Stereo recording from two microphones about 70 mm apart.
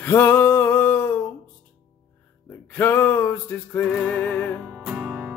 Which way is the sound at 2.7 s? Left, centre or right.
Left.